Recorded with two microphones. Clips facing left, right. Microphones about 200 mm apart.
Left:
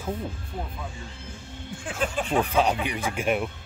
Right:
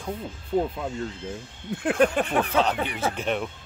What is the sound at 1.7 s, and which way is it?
Speech, 60° right (ahead or behind).